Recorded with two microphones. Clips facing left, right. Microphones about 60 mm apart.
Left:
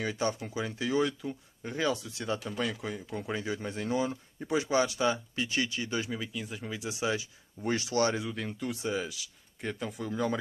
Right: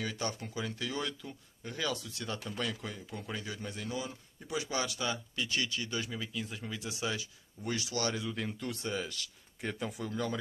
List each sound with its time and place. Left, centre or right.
0.0 s speech: left
2.5 s speech: centre
6.1 s speech: centre; by 8.3 s left
8.4 s speech: centre